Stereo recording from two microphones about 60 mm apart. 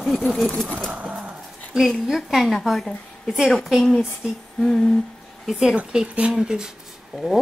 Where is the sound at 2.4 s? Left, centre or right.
Centre.